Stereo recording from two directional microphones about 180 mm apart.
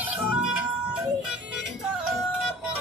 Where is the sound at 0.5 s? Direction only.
5° right (ahead or behind).